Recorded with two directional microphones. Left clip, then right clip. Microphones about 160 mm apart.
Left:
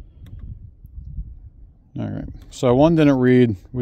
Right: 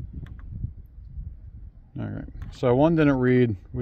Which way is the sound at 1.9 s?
90° left.